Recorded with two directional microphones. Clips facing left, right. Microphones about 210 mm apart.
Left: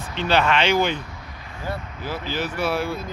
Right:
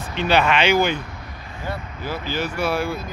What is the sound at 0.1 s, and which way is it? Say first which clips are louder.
Speech: right 1 dB; 10° right (ahead or behind).